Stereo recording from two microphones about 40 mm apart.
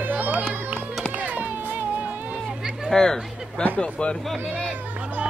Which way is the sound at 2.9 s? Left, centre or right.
Centre.